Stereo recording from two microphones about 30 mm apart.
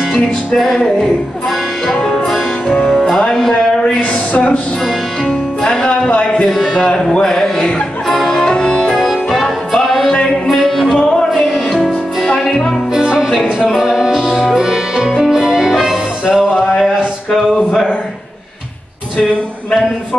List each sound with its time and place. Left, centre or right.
0.7 s a sound: centre
3.3 s music: left
5.6 s music: left
6.0 s music: left
6.5 s a sound: centre
8.1 s music: centre
8.5 s music: left
8.9 s music: centre
11.4 s music: centre
13.0 s music: right
13.7 s music: centre
16.3 s music: right